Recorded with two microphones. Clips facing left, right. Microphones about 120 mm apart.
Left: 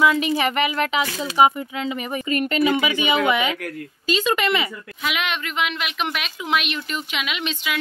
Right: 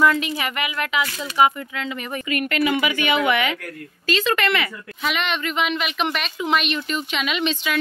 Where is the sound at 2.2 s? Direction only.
30° left (ahead or behind).